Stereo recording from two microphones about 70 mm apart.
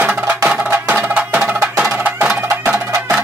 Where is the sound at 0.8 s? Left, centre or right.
Right.